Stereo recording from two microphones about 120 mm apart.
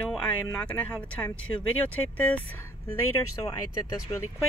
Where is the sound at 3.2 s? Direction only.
30° left (ahead or behind).